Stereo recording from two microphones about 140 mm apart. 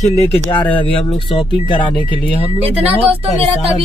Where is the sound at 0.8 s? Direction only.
40° left (ahead or behind).